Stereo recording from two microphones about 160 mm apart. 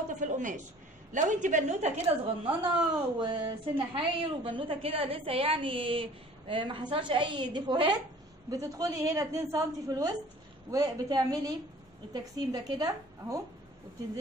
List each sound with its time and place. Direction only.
0.2 s a woman's voice: 50° right (ahead or behind); by 13.4 s 25° right (ahead or behind)